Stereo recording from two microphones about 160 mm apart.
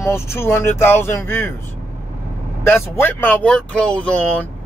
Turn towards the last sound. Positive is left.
turn(degrees=10)  # may be behind; listen again after turning